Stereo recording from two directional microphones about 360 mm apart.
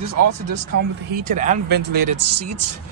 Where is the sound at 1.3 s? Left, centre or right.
Right.